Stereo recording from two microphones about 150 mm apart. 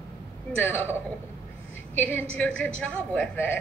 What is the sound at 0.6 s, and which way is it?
Speech, 15° left (ahead or behind).